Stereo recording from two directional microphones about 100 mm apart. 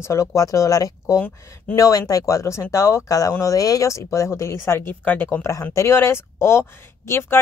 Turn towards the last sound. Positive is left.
turn(degrees=25)  # may be behind; listen again after turning